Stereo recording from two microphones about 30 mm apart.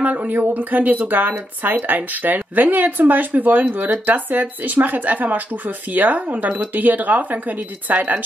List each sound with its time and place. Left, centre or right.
0.0 s speech: right
0.3 s speech: right
3.7 s speech: right